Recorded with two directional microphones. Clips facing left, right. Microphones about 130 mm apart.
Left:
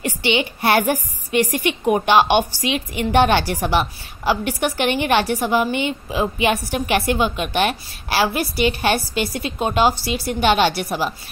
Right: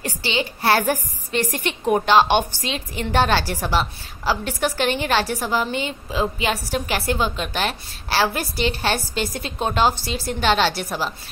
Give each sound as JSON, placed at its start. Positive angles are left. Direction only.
{"t": 0.0, "sound": "a woman's voice", "side_deg": 15}